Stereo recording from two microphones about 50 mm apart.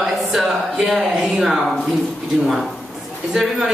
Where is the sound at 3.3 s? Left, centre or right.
Centre.